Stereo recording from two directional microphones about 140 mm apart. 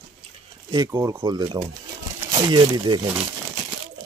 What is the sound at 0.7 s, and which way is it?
Speech, 25° right (ahead or behind).